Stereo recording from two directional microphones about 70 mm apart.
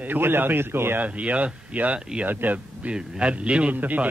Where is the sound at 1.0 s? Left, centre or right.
Centre.